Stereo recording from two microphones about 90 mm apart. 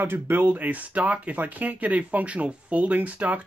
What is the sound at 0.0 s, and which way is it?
Speech, 25° right (ahead or behind).